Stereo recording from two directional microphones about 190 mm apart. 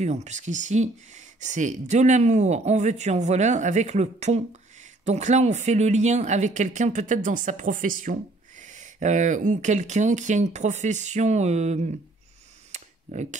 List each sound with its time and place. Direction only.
0.0 s speech: 35° right (ahead or behind)
12.7 s camera: 40° right (ahead or behind)